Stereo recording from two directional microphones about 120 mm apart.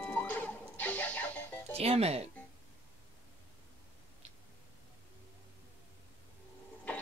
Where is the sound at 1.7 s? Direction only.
55° right (ahead or behind).